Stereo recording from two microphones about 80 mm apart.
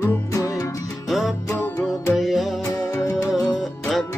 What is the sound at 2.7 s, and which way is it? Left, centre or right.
Music, left.